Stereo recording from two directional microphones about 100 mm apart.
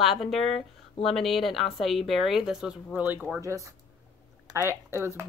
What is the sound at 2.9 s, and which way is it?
Speech, 20° right (ahead or behind).